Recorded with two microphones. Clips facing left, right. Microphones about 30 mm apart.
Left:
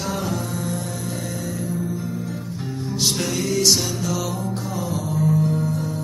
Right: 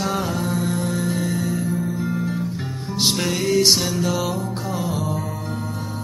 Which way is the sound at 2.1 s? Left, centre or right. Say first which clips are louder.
Right 5 dB; right.